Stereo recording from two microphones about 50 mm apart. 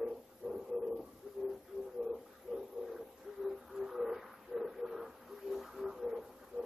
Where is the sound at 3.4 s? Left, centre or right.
Centre.